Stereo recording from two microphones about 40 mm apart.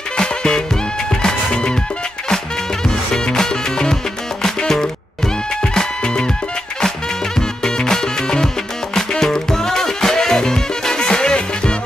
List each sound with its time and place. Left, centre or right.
0.2 s music: centre
2.9 s music: centre
7.3 s music: centre